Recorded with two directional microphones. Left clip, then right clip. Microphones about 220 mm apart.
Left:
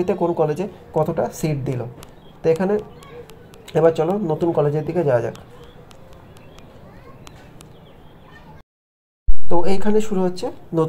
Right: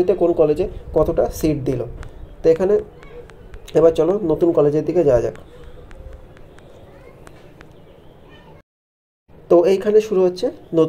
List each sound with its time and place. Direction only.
0.0 s speech: 5° right (ahead or behind)
9.5 s speech: centre (ahead or behind)